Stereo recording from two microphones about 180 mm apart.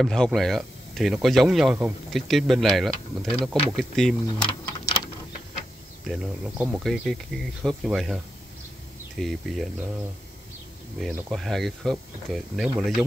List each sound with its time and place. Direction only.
0.0 s speech: centre (ahead or behind)
4.4 s typing: 25° left (ahead or behind)
6.0 s speech: 5° right (ahead or behind)
9.2 s speech: centre (ahead or behind)
11.0 s speech: centre (ahead or behind)